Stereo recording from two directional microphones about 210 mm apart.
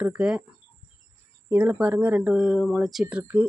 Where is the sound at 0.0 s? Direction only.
5° right (ahead or behind).